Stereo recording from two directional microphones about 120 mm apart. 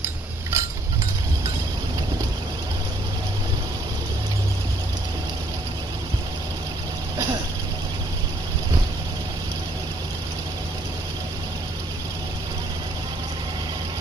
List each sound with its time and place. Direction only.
0.0 s chink: 25° right (ahead or behind)